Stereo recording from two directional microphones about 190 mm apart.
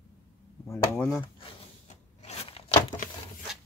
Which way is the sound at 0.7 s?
5° left (ahead or behind).